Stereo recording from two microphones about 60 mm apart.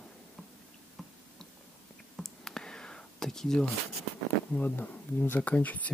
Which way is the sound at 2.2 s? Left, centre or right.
Centre.